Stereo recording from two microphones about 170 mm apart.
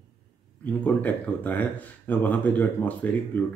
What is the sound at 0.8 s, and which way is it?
Speech, 10° left (ahead or behind).